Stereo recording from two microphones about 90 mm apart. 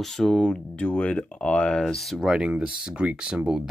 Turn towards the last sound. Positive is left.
turn(degrees=-10)  # may be behind; listen again after turning